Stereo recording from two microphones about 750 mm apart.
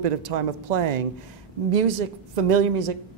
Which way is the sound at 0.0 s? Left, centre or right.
Right.